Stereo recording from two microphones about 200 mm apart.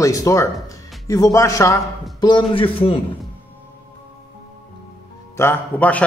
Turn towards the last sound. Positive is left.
turn(degrees=5)  # may be behind; listen again after turning